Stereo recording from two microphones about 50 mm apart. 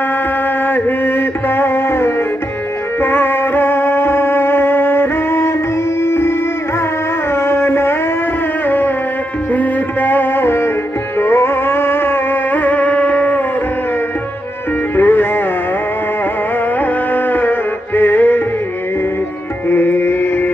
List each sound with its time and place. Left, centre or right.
0.7 s music: left
7.3 s a sound: left
8.6 s music: left
15.0 s music: left
16.8 s music: left
19.7 s chant: left